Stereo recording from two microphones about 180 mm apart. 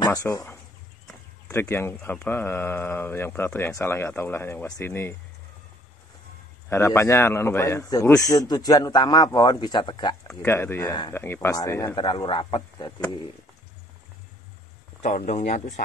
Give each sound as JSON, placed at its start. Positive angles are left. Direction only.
{"t": 0.0, "sound": "speech", "side_deg": 20}
{"t": 6.7, "sound": "speech", "side_deg": 15}
{"t": 10.4, "sound": "speech", "side_deg": 15}
{"t": 15.0, "sound": "speech", "side_deg": 40}